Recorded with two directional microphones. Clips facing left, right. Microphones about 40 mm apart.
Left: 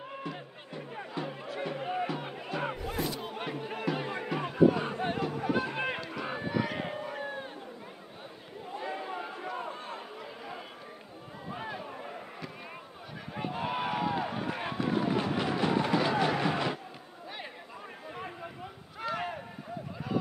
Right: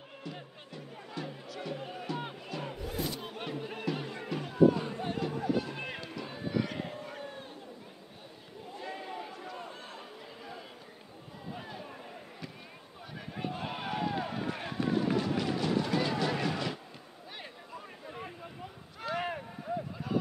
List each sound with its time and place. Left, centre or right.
1.1 s music: left
2.4 s battle cry: left
3.0 s music: centre
3.4 s music: centre; by 5.9 s left
6.2 s run: left
6.5 s a sound: centre
6.8 s a sound: left
8.7 s chatter: left
11.7 s a sound: left
13.3 s run: centre
15.1 s music: left
18.1 s boat: centre
18.9 s a sound: centre